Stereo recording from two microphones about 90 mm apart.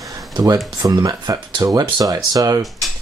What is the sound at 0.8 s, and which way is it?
Speech, 45° right (ahead or behind).